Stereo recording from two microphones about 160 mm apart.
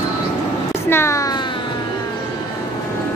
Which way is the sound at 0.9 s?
15° left (ahead or behind).